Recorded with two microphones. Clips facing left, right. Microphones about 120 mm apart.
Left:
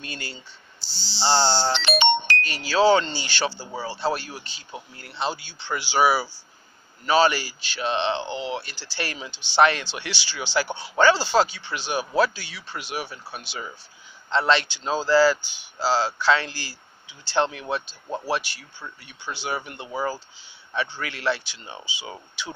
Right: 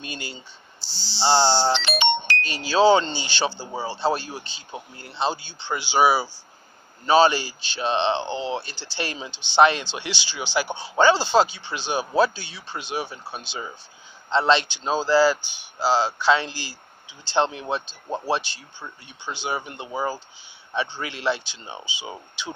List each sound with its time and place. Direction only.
0.0 s speech: 20° right (ahead or behind)